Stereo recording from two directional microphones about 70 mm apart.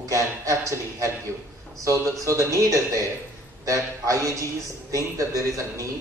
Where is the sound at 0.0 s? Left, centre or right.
Right.